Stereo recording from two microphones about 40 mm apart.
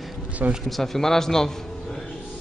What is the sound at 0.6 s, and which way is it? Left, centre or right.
Speech, centre.